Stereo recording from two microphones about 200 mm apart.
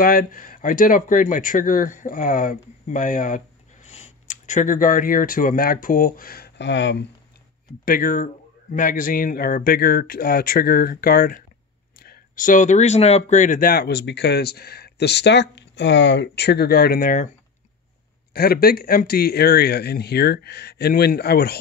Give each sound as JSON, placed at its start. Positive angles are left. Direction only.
{"t": 0.0, "sound": "speech", "side_deg": 45}
{"t": 7.8, "sound": "speech", "side_deg": 45}
{"t": 18.3, "sound": "speech", "side_deg": 50}